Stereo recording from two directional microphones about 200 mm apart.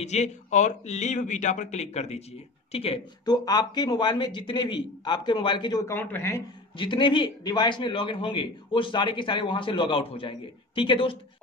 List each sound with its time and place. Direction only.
0.0 s a man's voice: 35° left (ahead or behind); by 6.4 s 10° left (ahead or behind)
6.8 s a man's voice: 25° left (ahead or behind)